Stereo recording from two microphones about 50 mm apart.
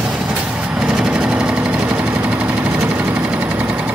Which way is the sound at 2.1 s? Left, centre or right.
Right.